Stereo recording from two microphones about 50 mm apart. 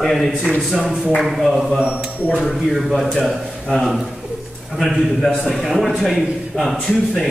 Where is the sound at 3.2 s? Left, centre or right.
Centre.